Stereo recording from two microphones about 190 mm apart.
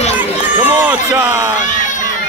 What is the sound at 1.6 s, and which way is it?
Crowd, 40° left (ahead or behind).